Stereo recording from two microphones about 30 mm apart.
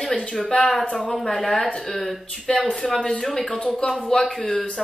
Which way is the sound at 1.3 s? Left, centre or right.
Centre.